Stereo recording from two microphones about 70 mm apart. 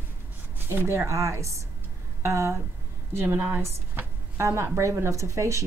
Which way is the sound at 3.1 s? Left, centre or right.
Right.